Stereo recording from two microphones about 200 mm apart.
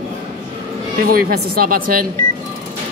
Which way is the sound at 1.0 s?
50° right (ahead or behind).